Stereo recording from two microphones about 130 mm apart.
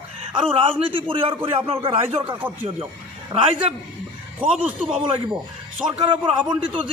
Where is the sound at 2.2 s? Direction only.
15° right (ahead or behind).